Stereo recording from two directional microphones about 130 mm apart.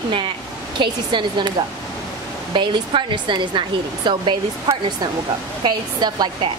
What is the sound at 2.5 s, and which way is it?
Speech, 40° right (ahead or behind).